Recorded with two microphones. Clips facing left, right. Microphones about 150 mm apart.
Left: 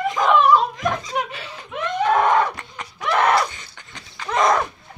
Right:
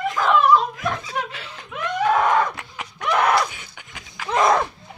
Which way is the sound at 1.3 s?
Centre (ahead or behind).